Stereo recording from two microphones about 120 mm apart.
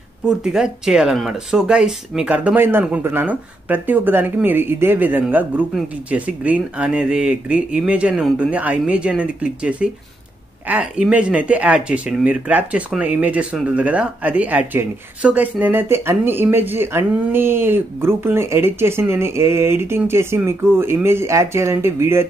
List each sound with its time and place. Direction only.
0.2 s speech: 5° right (ahead or behind); by 22.3 s 20° right (ahead or behind)